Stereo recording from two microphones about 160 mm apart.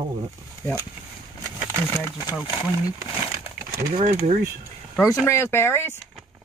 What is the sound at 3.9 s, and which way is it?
Speech, 50° right (ahead or behind).